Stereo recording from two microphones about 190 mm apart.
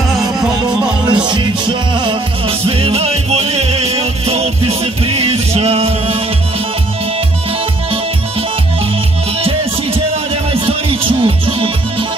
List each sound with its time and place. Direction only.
0.1 s music: 5° right (ahead or behind)
1.1 s music: 25° right (ahead or behind)
11.2 s music: 30° right (ahead or behind)